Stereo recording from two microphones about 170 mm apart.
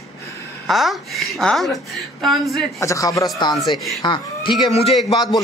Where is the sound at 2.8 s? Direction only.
20° left (ahead or behind); by 4.9 s 35° left (ahead or behind).